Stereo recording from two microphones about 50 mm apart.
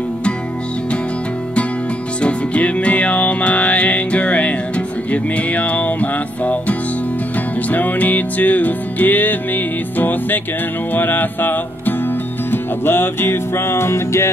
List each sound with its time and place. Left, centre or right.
2.2 s music: left